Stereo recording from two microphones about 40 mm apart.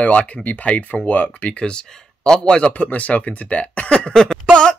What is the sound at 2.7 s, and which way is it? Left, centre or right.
Speech, left.